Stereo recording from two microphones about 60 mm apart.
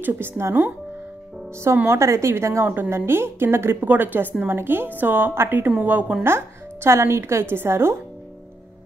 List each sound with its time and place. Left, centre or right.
0.0 s a woman's voice: right
1.9 s a woman's voice: right
2.7 s a woman's voice: right
3.8 s a woman's voice: right
5.8 s a woman's voice: right
6.2 s a woman's voice: right